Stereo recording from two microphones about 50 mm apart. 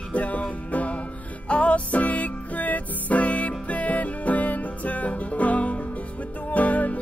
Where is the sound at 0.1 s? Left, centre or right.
Left.